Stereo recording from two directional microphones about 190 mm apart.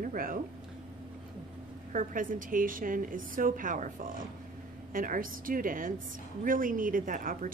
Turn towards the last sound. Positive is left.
turn(degrees=-45)  # may be behind; listen again after turning